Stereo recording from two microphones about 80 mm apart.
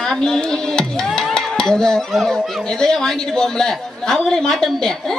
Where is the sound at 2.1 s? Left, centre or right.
Centre.